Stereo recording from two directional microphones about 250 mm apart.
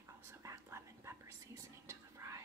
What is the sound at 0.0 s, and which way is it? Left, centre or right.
Whispering, centre.